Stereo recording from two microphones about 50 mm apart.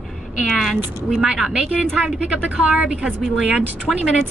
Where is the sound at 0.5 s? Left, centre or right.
Centre.